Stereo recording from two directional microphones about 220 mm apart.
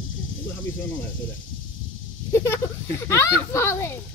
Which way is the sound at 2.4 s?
10° left (ahead or behind).